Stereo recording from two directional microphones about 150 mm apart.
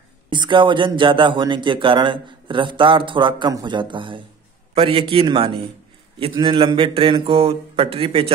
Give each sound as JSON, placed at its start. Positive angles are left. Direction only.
{"t": 0.3, "sound": "a man's voice", "side_deg": -30}